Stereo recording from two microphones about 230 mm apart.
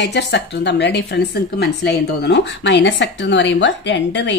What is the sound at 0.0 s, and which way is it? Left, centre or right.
A woman's voice, left.